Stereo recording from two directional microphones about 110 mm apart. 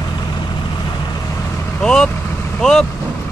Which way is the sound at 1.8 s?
5° left (ahead or behind).